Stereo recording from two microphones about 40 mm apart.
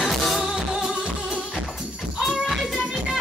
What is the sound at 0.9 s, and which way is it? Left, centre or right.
Music, right.